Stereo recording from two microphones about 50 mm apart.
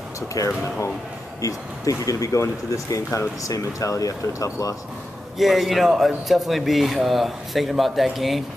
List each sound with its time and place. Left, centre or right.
1.4 s speech: left
5.4 s speech: centre